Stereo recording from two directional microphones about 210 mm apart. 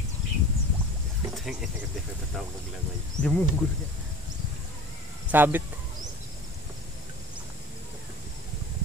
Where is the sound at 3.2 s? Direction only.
35° left (ahead or behind).